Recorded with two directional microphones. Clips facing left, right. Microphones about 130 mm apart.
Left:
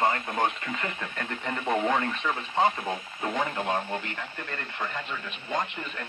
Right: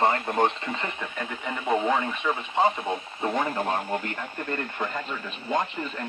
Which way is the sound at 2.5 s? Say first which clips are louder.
Right 1 dB; 20° right (ahead or behind).